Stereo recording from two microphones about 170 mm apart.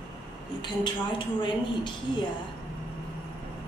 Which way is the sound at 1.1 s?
30° left (ahead or behind).